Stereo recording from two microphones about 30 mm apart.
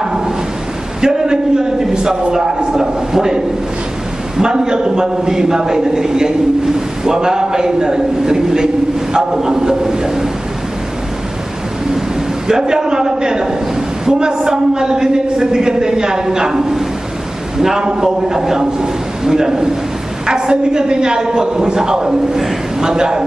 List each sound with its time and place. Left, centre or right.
1.0 s a sound: right
2.4 s a man's voice: centre
12.4 s a man's voice: right